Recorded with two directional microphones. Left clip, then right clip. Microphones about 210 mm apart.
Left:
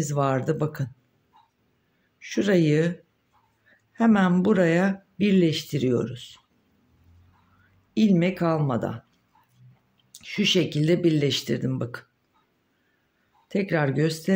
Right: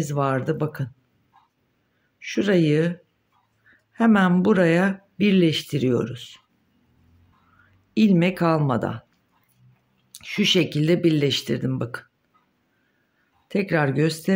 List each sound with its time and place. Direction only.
0.0 s speech: 10° right (ahead or behind)
2.1 s speech: 10° right (ahead or behind)
7.9 s speech: 15° right (ahead or behind)
10.1 s speech: 15° right (ahead or behind)
13.5 s speech: 15° right (ahead or behind)